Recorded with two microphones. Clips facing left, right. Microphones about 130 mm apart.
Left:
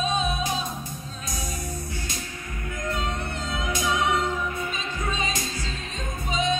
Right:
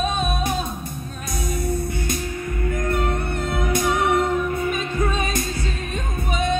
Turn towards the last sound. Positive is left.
turn(degrees=-60)  # may be behind; listen again after turning